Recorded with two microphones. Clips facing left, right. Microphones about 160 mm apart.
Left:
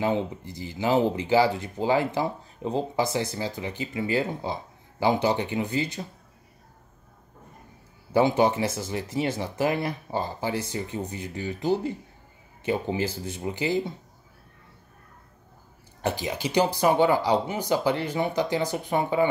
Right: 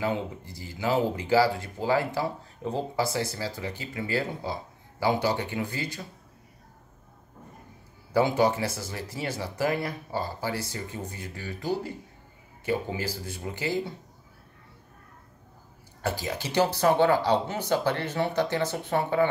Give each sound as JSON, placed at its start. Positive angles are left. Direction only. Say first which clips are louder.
{"t": 0.0, "sound": "speech", "louder": "left 3 dB", "side_deg": 20}
{"t": 8.1, "sound": "speech", "louder": "left 2 dB", "side_deg": 20}
{"t": 16.0, "sound": "speech", "louder": "left 3 dB", "side_deg": 20}